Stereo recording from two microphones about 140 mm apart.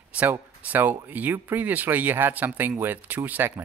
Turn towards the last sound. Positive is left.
turn(degrees=-10)  # may be behind; listen again after turning